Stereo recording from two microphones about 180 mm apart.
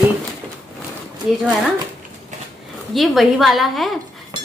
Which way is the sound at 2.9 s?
Centre (ahead or behind).